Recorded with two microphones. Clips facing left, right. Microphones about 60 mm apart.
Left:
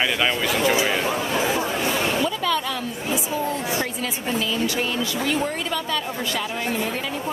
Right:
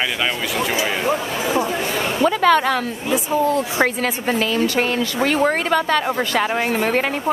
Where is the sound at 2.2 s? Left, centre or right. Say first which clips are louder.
Right 8 dB; right.